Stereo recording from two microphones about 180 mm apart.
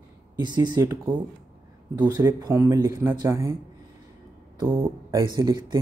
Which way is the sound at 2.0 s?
15° right (ahead or behind).